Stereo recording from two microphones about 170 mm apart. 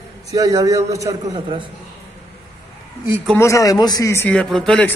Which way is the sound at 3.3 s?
20° left (ahead or behind).